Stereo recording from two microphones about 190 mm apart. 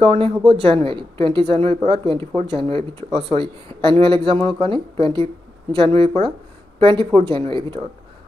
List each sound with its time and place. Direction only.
0.0 s speech: 30° right (ahead or behind)